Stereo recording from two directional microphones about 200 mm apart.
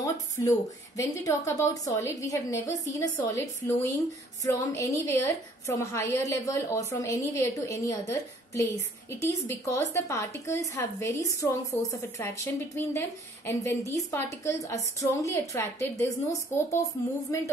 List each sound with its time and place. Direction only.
0.0 s a woman's voice: 15° left (ahead or behind)
13.5 s a woman's voice: 15° left (ahead or behind)